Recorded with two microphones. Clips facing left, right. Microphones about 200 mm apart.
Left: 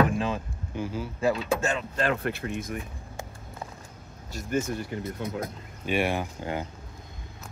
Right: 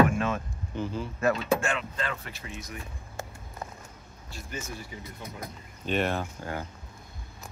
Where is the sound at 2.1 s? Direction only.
60° left (ahead or behind).